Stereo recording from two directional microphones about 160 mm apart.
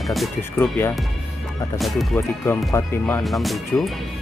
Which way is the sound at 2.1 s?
15° left (ahead or behind).